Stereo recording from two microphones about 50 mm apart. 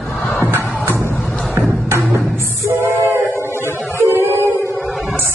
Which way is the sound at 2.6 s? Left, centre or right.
Right.